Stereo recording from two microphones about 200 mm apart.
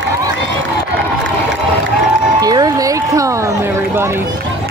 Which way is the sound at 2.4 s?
20° right (ahead or behind).